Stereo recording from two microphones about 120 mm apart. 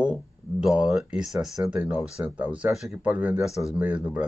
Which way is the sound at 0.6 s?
5° right (ahead or behind).